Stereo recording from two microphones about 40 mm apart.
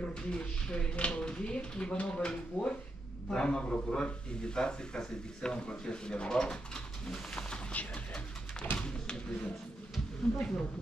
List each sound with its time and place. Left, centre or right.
0.1 s a man's voice: left
7.7 s speech: left
8.7 s pigeon: left
10.3 s a man's voice: left